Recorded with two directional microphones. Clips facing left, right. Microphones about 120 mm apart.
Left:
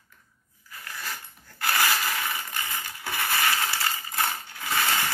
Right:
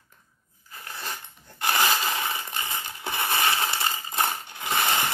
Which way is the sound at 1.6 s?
20° right (ahead or behind).